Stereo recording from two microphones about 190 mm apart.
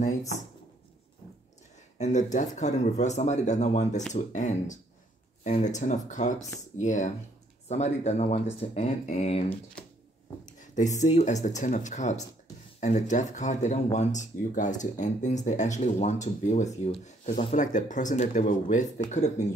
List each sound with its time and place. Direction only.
0.3 s speech: 35° left (ahead or behind)
2.3 s speech: 40° left (ahead or behind)